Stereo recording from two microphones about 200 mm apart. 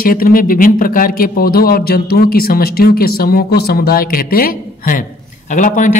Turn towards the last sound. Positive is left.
turn(degrees=40)  # may be behind; listen again after turning